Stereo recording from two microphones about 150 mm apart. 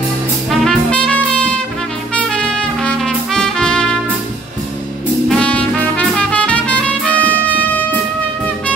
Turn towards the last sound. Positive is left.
turn(degrees=10)  # may be behind; listen again after turning